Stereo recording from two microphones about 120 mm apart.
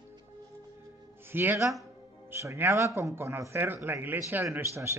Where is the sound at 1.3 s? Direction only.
15° right (ahead or behind).